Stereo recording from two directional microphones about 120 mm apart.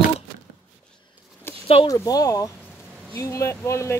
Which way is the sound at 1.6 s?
50° left (ahead or behind).